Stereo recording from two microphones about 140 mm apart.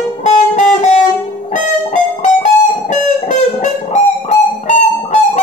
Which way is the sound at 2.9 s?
60° left (ahead or behind).